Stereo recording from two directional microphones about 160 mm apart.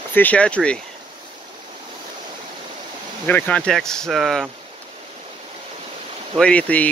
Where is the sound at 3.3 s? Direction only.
10° left (ahead or behind).